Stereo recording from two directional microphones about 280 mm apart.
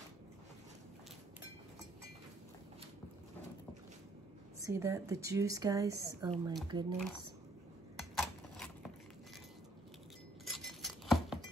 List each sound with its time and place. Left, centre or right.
4.6 s a woman's voice: centre
8.0 s a sound: centre
10.4 s glass: centre